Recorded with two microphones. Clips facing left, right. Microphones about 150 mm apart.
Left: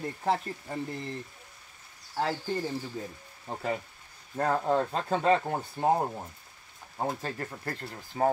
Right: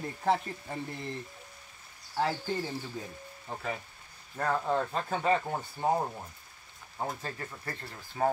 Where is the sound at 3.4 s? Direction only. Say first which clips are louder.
Left 5 dB; 30° left (ahead or behind).